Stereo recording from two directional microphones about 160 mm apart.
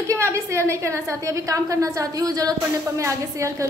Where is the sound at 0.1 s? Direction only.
20° right (ahead or behind).